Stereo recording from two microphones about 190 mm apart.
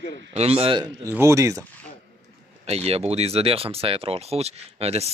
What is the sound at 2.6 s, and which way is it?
Speech, 30° right (ahead or behind).